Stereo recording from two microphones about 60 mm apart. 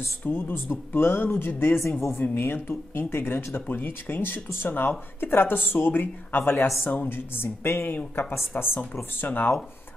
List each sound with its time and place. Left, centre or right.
0.2 s speech: left
2.3 s speech: left